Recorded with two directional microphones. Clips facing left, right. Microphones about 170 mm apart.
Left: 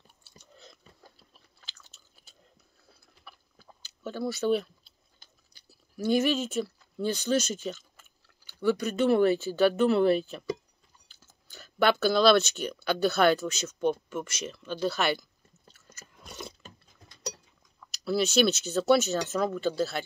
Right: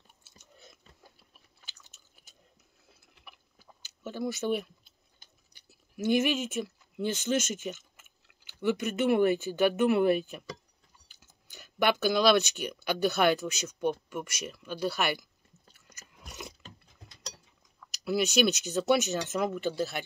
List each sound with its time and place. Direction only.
0.7 s chewing: 15° right (ahead or behind)
4.0 s speech: 15° right (ahead or behind)
5.9 s speech: 20° right (ahead or behind)
15.7 s a sound: 15° right (ahead or behind)
17.9 s speech: 15° right (ahead or behind)